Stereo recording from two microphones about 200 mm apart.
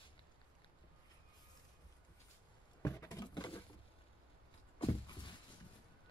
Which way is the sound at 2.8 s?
20° left (ahead or behind).